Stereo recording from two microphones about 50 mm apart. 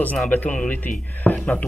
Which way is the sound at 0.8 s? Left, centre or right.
Left.